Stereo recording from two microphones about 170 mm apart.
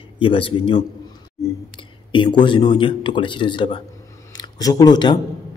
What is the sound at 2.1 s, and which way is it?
A man's voice, 30° left (ahead or behind).